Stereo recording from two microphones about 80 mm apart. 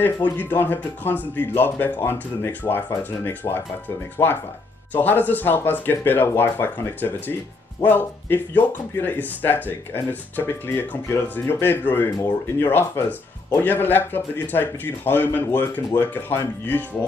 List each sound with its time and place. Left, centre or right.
0.0 s speech: left
4.9 s speech: left